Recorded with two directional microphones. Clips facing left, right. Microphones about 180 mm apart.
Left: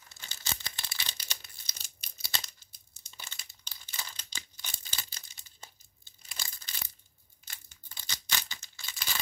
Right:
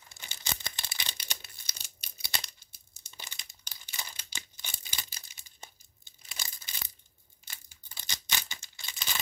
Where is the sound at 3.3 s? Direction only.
10° right (ahead or behind).